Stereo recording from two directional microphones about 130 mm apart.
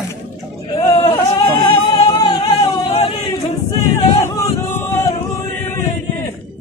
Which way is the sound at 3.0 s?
50° left (ahead or behind).